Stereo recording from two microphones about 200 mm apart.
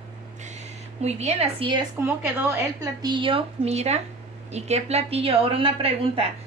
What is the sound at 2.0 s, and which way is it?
A woman's voice, 15° right (ahead or behind).